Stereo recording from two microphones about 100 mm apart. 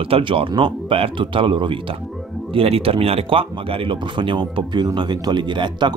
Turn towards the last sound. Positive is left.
turn(degrees=-50)  # may be behind; listen again after turning